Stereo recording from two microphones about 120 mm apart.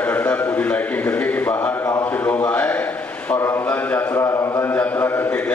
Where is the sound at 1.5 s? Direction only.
25° left (ahead or behind).